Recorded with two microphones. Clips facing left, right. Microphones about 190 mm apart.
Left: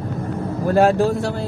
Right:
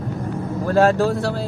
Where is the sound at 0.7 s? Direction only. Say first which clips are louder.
Even; 15° left (ahead or behind).